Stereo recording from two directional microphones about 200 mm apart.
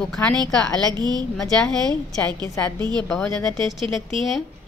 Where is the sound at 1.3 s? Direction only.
5° left (ahead or behind).